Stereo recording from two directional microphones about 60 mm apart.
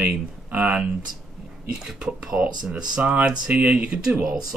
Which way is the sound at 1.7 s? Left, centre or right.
Centre.